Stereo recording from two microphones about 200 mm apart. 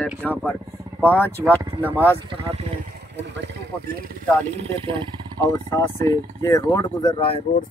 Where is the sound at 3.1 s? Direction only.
60° right (ahead or behind).